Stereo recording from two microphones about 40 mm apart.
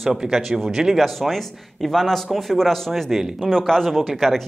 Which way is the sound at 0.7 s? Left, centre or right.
Centre.